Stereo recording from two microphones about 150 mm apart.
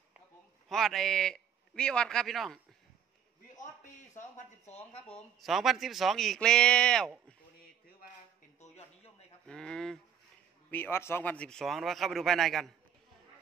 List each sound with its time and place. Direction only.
0.7 s a man's voice: centre (ahead or behind)
4.1 s speech: 50° left (ahead or behind)
5.4 s a man's voice: centre (ahead or behind)
8.5 s a sound: 45° left (ahead or behind)
9.5 s a sound: 5° left (ahead or behind)
10.7 s a man's voice: 15° left (ahead or behind)